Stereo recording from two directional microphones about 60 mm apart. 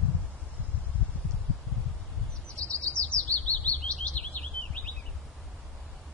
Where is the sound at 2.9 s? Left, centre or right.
Centre.